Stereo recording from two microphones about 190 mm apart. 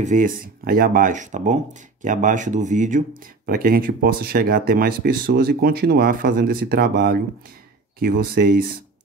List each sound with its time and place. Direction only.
0.0 s speech: 45° right (ahead or behind)